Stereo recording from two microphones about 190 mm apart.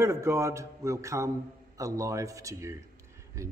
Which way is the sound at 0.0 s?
15° right (ahead or behind).